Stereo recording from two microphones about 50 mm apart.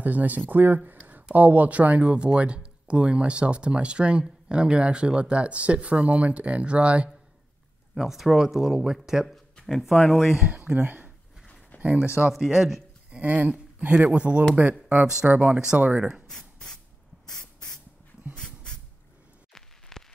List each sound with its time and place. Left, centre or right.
0.0 s speech: right
7.9 s speech: centre
10.5 s speech: right
11.7 s a sound: left
12.3 s speech: centre
13.1 s speech: right
14.6 s speech: right
16.3 s a sound: centre
17.3 s spray: centre
18.3 s a sound: centre
19.9 s rain on surface: centre